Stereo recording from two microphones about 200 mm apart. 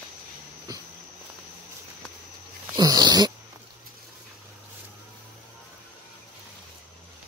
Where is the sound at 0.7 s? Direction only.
20° right (ahead or behind).